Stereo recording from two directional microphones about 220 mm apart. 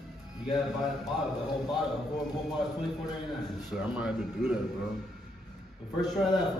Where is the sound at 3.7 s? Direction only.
5° right (ahead or behind).